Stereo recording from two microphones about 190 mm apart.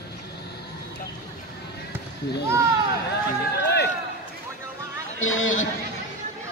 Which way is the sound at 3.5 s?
60° left (ahead or behind).